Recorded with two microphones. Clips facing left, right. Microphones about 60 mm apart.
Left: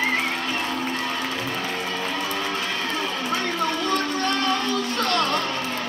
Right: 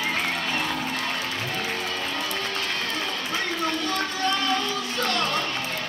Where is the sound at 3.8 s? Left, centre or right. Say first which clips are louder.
Left 3 dB; left.